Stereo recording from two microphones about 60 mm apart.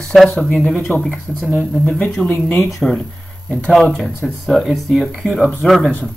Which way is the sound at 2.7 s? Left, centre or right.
Centre.